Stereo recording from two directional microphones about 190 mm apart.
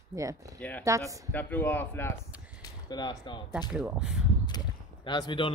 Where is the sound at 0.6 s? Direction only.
10° left (ahead or behind).